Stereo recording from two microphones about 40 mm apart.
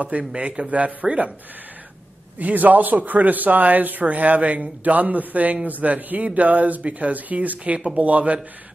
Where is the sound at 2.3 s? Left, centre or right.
Right.